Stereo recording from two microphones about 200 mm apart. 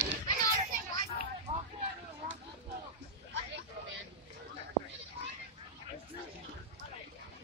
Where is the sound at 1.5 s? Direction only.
35° right (ahead or behind).